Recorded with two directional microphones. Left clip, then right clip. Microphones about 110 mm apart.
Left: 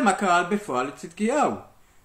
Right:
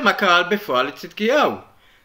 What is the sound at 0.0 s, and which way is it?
Speech, 25° left (ahead or behind).